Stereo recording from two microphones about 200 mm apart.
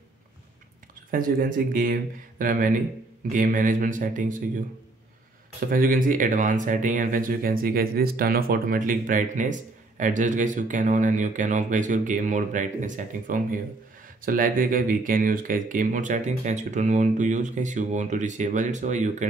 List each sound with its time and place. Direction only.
1.1 s speech: 45° right (ahead or behind)
5.7 s speech: 45° right (ahead or behind)